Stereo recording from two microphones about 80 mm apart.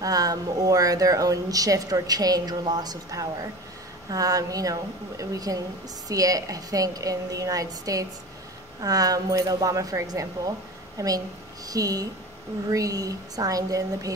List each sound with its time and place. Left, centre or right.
0.0 s speech: right